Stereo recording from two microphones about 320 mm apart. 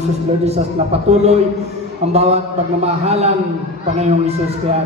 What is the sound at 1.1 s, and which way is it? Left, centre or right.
Music, centre.